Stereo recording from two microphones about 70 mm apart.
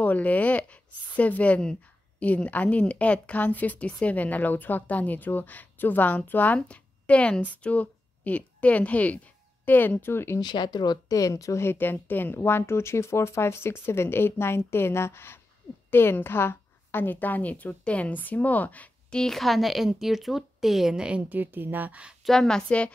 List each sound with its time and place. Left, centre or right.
0.0 s a woman's voice: left
10.4 s speech: left
11.1 s a woman's voice: left
19.1 s speech: centre
21.3 s speech: right
22.2 s a woman's voice: centre